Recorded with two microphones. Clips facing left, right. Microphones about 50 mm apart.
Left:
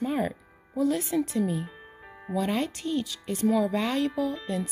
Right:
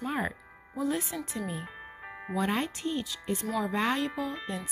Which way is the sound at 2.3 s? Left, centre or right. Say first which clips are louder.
Left 2 dB; right.